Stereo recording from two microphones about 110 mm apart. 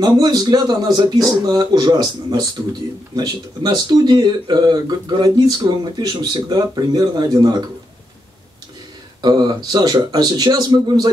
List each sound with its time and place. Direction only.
0.0 s speech: 35° right (ahead or behind)
9.2 s speech: 40° right (ahead or behind)